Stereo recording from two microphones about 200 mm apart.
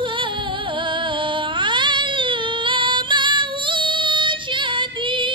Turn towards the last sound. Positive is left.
turn(degrees=-25)  # may be behind; listen again after turning